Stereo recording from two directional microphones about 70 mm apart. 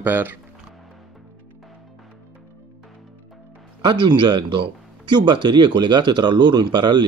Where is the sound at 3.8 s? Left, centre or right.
Right.